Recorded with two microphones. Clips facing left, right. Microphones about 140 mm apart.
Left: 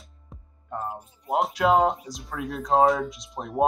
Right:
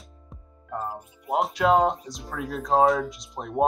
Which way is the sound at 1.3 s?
Centre (ahead or behind).